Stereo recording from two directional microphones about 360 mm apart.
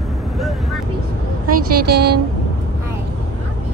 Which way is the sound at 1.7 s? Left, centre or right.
Right.